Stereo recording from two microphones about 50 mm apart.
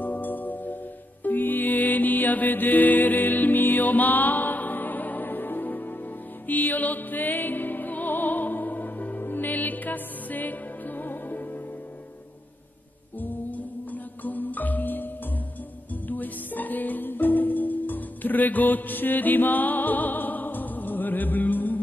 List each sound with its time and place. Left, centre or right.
0.0 s music: left
14.2 s music: left
16.1 s music: left